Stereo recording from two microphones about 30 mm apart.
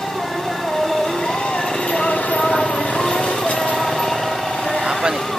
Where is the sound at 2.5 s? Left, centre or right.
Left.